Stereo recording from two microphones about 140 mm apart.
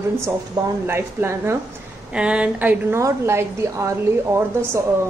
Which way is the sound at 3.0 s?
20° right (ahead or behind).